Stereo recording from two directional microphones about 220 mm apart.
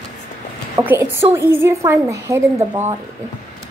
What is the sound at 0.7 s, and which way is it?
A woman's voice, 10° right (ahead or behind).